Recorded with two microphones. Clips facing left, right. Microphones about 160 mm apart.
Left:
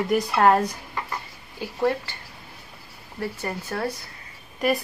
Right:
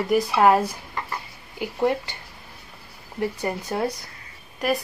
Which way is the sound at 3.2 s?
15° right (ahead or behind).